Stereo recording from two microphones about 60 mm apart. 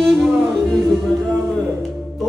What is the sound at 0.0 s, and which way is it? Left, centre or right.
Music, centre.